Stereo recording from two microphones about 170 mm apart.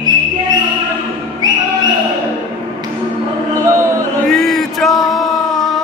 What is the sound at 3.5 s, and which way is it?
Music, 15° right (ahead or behind).